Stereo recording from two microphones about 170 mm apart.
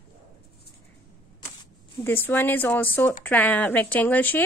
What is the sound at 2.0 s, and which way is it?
Speech, 10° left (ahead or behind).